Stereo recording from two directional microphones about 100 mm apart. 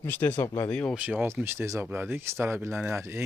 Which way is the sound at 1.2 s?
25° right (ahead or behind).